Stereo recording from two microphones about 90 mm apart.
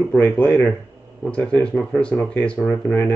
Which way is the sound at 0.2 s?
20° left (ahead or behind).